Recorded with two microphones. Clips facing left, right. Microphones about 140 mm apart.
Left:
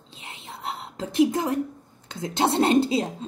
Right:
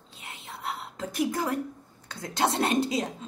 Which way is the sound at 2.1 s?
25° left (ahead or behind).